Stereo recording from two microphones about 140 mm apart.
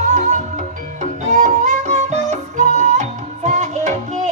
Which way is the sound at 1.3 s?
60° right (ahead or behind).